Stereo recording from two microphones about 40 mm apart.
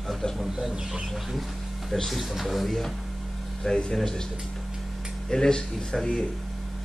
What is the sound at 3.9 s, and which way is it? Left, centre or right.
Speech, centre.